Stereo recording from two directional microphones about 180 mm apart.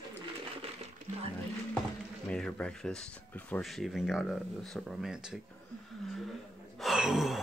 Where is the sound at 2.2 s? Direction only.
5° left (ahead or behind).